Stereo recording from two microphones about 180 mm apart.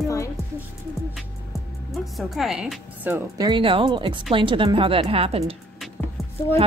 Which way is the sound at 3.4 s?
25° right (ahead or behind).